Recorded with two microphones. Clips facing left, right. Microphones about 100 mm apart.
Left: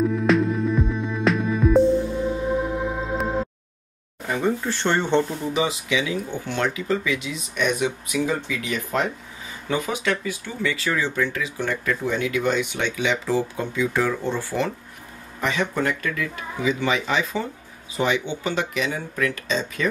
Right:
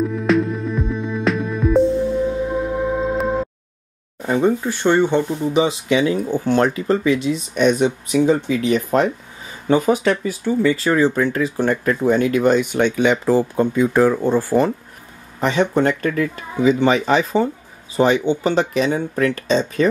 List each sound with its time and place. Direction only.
0.0 s music: centre (ahead or behind)
4.3 s speech: 20° right (ahead or behind)
5.9 s speech: 45° right (ahead or behind)
15.4 s speech: 30° right (ahead or behind)